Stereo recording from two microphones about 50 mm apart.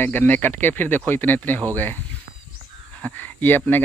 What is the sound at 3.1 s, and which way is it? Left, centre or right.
Speech, left.